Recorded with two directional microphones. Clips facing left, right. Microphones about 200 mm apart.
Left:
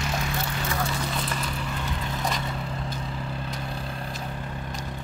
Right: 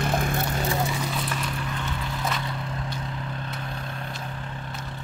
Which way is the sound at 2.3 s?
Centre (ahead or behind).